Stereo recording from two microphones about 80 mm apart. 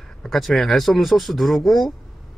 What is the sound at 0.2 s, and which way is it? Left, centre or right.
Speech, centre.